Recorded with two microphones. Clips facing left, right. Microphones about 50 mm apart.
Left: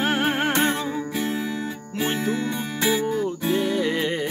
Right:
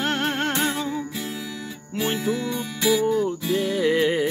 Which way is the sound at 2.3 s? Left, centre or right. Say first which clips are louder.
Left 1 dB; left.